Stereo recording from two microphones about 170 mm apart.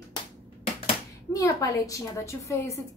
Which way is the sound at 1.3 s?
20° left (ahead or behind).